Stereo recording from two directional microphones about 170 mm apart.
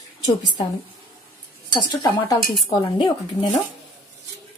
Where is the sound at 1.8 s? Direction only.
25° left (ahead or behind).